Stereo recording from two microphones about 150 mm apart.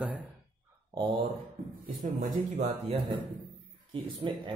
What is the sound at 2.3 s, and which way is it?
Speech, 50° right (ahead or behind).